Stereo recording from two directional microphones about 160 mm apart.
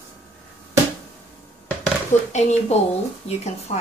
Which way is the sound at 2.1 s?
45° left (ahead or behind).